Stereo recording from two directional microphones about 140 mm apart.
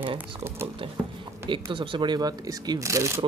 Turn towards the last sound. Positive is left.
turn(degrees=-20)  # may be behind; listen again after turning